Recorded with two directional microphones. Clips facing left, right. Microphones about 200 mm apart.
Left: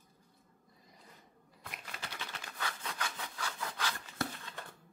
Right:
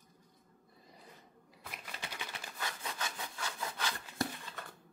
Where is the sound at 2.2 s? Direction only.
10° right (ahead or behind).